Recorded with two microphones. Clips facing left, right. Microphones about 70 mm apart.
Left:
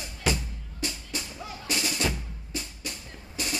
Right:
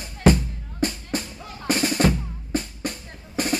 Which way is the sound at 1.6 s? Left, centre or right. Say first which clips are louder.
Right 9 dB; right.